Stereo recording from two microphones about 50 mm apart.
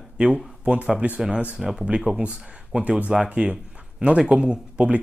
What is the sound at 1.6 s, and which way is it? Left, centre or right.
Speech, centre.